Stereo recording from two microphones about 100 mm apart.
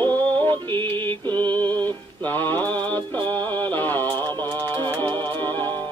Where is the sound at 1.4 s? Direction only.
20° left (ahead or behind).